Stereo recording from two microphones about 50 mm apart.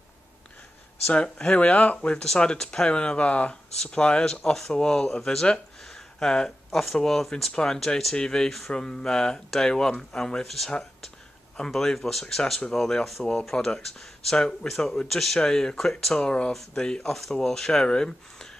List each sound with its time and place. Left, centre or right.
1.1 s speech: left
2.1 s speech: centre
7.5 s speech: centre
11.5 s speech: centre
15.0 s speech: centre
15.4 s speech: centre